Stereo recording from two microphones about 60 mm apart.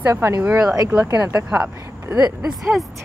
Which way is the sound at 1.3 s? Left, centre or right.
Right.